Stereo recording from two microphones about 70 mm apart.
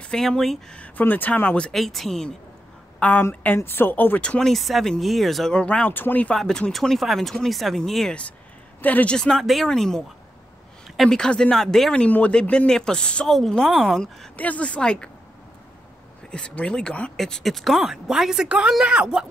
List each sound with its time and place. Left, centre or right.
0.0 s speech: centre
0.7 s speech: left
1.7 s speech: centre
3.0 s a woman's voice: left
4.2 s speech: centre
4.5 s speech: centre
5.5 s speech: centre
5.9 s speech: left
6.3 s speech: centre
8.8 s speech: left
9.1 s speech: centre
14.3 s speech: left
16.3 s speech: centre
17.2 s speech: centre